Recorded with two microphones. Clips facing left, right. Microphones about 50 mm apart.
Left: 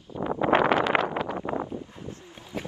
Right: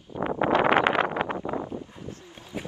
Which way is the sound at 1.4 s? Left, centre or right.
Centre.